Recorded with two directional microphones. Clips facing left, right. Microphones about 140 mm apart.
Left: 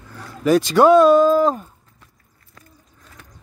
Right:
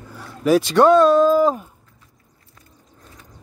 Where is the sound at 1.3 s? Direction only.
5° right (ahead or behind).